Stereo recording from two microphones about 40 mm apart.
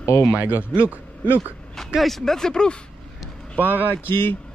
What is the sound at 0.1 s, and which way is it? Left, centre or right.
Speech, left.